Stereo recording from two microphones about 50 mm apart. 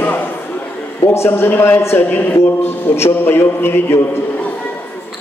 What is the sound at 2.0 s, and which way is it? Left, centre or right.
Speech, left.